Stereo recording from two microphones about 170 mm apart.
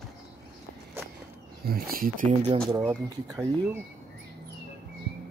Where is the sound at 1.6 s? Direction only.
60° right (ahead or behind).